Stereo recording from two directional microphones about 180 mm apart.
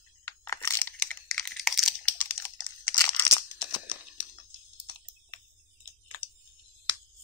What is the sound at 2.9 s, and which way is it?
Crunch, 15° left (ahead or behind).